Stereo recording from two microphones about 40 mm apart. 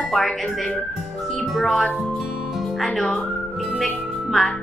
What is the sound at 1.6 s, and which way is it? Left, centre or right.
Speech, centre.